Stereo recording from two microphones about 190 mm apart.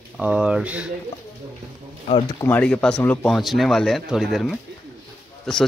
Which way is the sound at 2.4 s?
5° left (ahead or behind).